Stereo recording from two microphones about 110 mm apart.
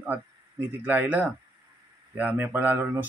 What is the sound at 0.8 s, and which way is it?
Speech, 15° right (ahead or behind).